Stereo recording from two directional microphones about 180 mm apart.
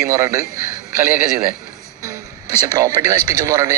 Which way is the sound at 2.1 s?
20° right (ahead or behind).